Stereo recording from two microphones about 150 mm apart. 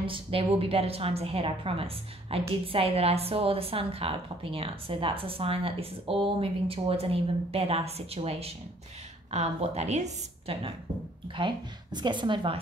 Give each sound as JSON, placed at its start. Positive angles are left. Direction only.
{"t": 0.0, "sound": "a woman's voice", "side_deg": -35}